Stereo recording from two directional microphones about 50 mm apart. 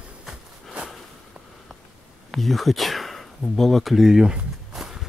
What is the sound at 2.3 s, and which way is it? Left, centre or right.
Speech, centre.